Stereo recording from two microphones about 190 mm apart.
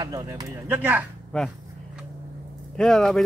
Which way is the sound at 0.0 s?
20° right (ahead or behind).